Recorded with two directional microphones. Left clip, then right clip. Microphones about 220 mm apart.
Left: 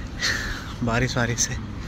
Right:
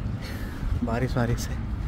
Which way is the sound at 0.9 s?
10° right (ahead or behind).